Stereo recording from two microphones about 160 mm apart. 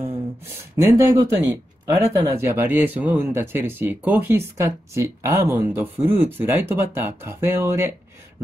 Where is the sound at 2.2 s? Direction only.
15° right (ahead or behind).